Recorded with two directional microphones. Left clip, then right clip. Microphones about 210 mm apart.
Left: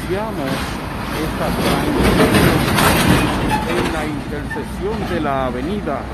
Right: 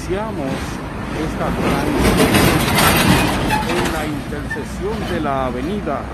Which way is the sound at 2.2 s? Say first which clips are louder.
Even; 35° right (ahead or behind).